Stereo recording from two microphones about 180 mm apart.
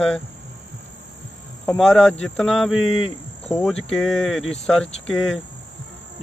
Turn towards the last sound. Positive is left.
turn(degrees=0)  # may be behind; listen again after turning